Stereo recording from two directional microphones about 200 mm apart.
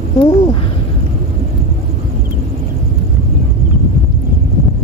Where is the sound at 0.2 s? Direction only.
25° left (ahead or behind).